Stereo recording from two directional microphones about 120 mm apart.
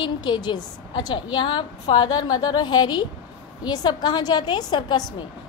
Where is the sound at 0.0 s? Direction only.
40° left (ahead or behind).